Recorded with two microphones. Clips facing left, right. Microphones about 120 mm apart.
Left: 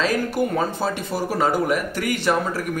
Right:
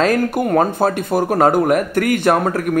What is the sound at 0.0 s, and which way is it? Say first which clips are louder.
Speech: right 5 dB; 55° right (ahead or behind).